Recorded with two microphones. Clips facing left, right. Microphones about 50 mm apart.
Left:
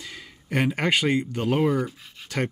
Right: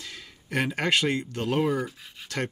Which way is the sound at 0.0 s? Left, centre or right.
Centre.